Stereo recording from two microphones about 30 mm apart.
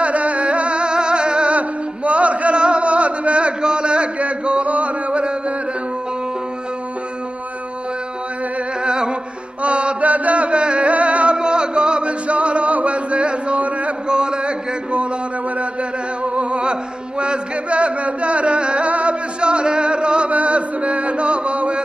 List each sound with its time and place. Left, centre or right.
0.0 s music: right
1.5 s chant: right
2.5 s chant: right
8.8 s music: right
9.6 s chant: right
10.9 s music: right
11.3 s music: right
14.0 s a sound: right
16.3 s music: right
19.4 s music: right
20.2 s chant: right